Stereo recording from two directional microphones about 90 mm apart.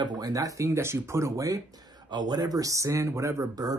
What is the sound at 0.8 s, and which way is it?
Speech, 30° right (ahead or behind).